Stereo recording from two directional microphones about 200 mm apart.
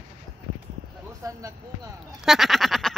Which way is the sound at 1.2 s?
15° right (ahead or behind).